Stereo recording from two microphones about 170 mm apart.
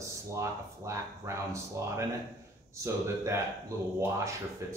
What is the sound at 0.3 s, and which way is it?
Speech, 15° right (ahead or behind).